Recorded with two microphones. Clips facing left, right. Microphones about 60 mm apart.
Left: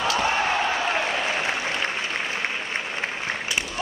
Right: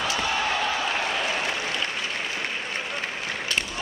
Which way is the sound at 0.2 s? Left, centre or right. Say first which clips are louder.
Left 3 dB; left.